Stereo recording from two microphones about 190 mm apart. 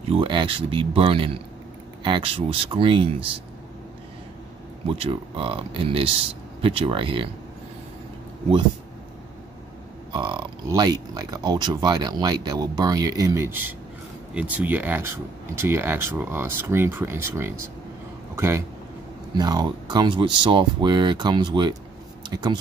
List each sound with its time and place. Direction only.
0.0 s speech: 30° right (ahead or behind)
4.8 s speech: 30° right (ahead or behind)
10.1 s a man's voice: 25° right (ahead or behind)